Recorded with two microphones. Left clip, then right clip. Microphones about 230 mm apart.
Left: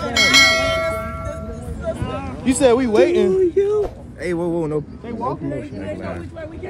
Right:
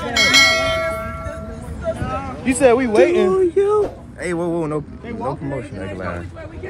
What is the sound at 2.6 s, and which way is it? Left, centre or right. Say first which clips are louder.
Speech: right 1 dB; left.